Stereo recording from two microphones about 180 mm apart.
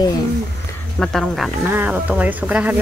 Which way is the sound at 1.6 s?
10° right (ahead or behind).